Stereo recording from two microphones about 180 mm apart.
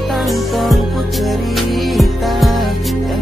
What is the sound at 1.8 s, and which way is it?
Music, centre (ahead or behind).